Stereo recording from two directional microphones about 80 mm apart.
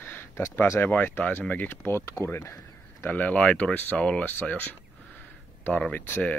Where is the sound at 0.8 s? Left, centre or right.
Left.